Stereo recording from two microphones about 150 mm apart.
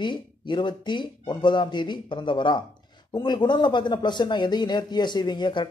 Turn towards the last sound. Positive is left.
turn(degrees=30)  # may be behind; listen again after turning